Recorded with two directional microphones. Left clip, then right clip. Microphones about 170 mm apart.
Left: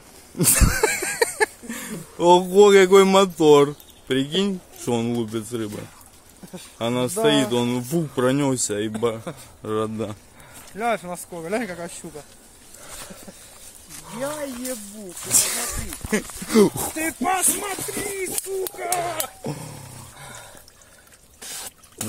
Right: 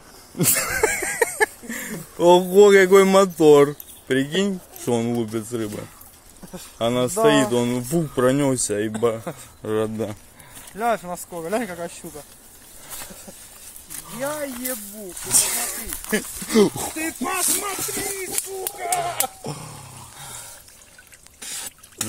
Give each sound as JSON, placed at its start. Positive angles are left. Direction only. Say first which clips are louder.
{"t": 0.4, "sound": "a man's voice", "louder": "even", "side_deg": 5}
{"t": 10.8, "sound": "speech", "louder": "right 1 dB", "side_deg": -15}
{"t": 14.1, "sound": "speech", "louder": "right 1 dB", "side_deg": -10}
{"t": 14.5, "sound": "speech", "louder": "even", "side_deg": -40}
{"t": 15.2, "sound": "speech", "louder": "even", "side_deg": 5}
{"t": 16.1, "sound": "speech", "louder": "even", "side_deg": 25}
{"t": 19.1, "sound": "a sound", "louder": "right 2 dB", "side_deg": 30}